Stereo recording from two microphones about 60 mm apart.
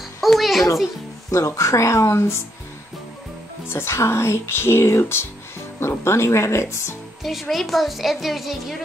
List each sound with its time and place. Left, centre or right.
0.2 s music: centre
1.3 s speech: left
3.6 s speech: left
7.2 s a woman's voice: centre